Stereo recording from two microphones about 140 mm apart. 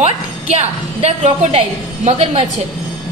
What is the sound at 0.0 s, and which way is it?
A woman's voice, 50° right (ahead or behind).